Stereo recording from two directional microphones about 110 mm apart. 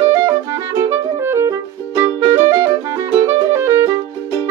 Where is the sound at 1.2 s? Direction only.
25° right (ahead or behind).